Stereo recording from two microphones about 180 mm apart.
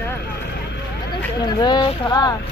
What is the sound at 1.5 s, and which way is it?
Speech, 25° left (ahead or behind).